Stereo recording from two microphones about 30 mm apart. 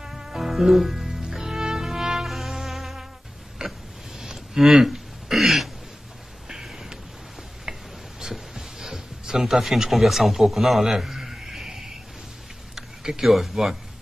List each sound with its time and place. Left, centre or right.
0.0 s music: right
0.5 s music: centre
2.2 s music: centre
3.6 s a sound: right
4.6 s throat clearing: centre
6.5 s a sound: centre
13.2 s speech: centre